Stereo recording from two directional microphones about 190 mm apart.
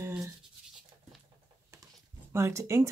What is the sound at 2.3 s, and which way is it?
Speech, 15° right (ahead or behind).